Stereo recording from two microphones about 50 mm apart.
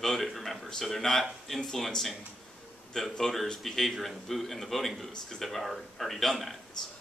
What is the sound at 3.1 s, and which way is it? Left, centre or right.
A man's voice, centre.